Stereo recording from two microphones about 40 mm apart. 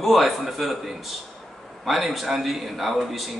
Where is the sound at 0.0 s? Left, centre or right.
Centre.